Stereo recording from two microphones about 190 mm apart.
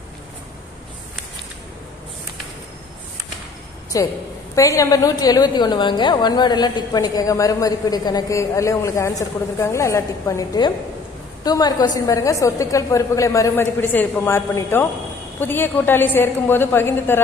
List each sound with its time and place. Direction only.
3.9 s a woman's voice: 15° left (ahead or behind)